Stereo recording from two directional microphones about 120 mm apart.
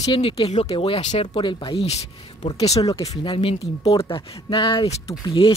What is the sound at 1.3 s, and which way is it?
Speech, 40° left (ahead or behind).